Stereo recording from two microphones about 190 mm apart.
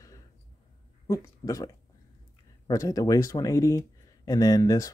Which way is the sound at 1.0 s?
20° left (ahead or behind).